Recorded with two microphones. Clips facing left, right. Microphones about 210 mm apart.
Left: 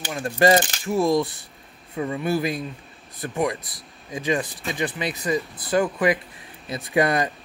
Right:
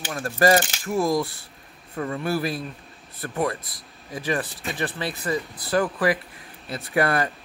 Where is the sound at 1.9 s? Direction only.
15° left (ahead or behind).